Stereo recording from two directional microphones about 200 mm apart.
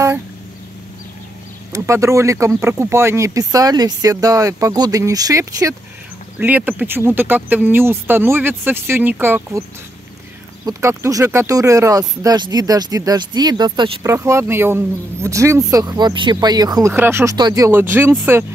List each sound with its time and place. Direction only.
1.7 s speech: 15° right (ahead or behind)
10.6 s speech: 15° right (ahead or behind)